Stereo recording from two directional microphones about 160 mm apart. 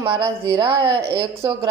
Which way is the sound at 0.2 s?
25° right (ahead or behind).